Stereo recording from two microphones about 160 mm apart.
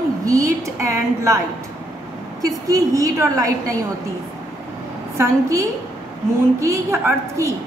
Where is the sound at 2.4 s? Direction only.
20° right (ahead or behind).